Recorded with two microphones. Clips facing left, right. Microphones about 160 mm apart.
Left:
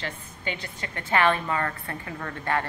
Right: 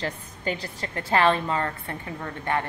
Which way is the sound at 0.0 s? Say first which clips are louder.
Right 4 dB; 40° right (ahead or behind).